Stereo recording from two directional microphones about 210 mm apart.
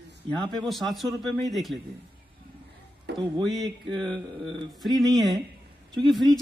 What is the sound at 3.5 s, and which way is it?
Speech, centre (ahead or behind).